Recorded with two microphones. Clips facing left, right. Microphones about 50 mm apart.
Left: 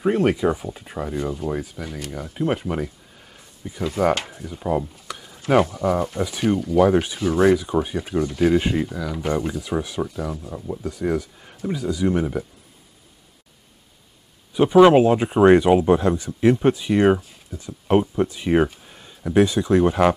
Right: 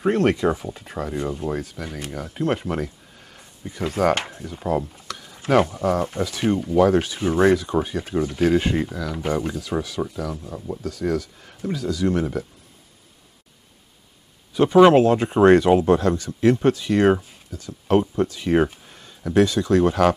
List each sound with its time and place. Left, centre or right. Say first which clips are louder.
0.0 s speech: even; centre
4.0 s speech: even; centre
5.0 s a sound: even; centre
5.8 s speech: even; centre
6.8 s speech: even; centre
7.2 s speech: even; centre
7.5 s speech: even; centre
8.2 s speech: left 1 dB; centre
8.5 s speech: left 1 dB; centre
8.7 s speech: even; centre
9.6 s speech: left 1 dB; centre
10.3 s speech: left 1 dB; centre
10.8 s speech: even; centre
14.5 s speech: left 1 dB; centre